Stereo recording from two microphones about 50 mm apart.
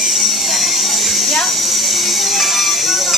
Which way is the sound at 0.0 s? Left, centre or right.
Centre.